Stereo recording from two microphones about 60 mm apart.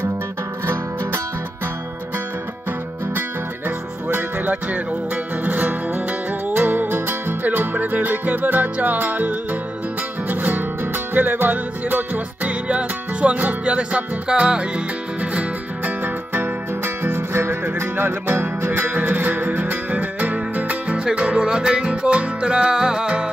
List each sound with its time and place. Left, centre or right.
3.2 s music: right; by 14.7 s centre
15.8 s music: right; by 23.2 s centre